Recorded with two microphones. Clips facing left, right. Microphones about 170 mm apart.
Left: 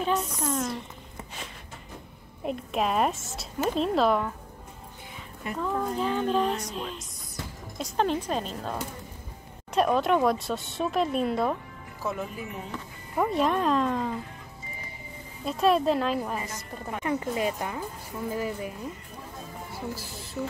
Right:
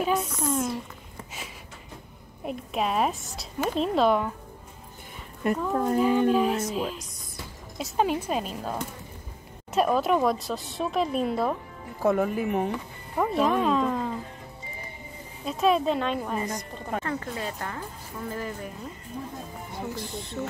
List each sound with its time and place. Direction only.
0.0 s speech: 5° right (ahead or behind)
2.4 s speech: centre (ahead or behind)
5.6 s speech: 10° right (ahead or behind)
9.8 s speech: centre (ahead or behind)
12.0 s speech: 55° right (ahead or behind)
13.2 s speech: centre (ahead or behind)
15.4 s speech: centre (ahead or behind)
17.0 s speech: 15° left (ahead or behind)
19.7 s speech: 5° left (ahead or behind)